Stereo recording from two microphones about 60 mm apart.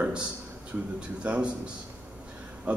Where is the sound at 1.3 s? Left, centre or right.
Centre.